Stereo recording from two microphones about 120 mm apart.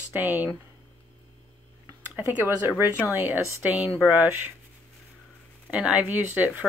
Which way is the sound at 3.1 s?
15° right (ahead or behind).